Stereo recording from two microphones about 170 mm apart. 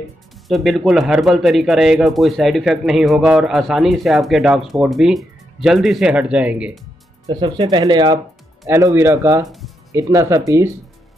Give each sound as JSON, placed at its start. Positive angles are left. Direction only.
{"t": 0.5, "sound": "speech", "side_deg": 0}
{"t": 7.4, "sound": "speech", "side_deg": -25}